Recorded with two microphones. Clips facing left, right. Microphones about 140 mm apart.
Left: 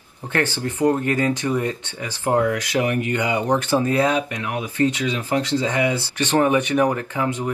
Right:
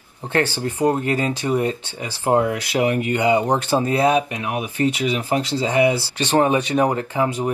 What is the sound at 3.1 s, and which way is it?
Speech, 30° right (ahead or behind).